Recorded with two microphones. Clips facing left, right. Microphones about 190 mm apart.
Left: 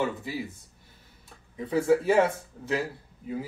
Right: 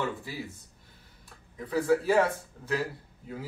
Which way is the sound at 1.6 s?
25° left (ahead or behind).